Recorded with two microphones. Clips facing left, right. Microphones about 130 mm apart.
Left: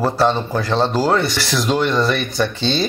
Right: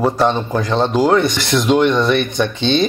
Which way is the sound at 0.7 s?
15° right (ahead or behind).